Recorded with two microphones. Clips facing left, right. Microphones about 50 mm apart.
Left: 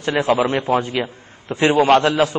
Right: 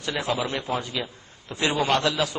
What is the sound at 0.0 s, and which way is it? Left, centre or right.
A man's voice, left.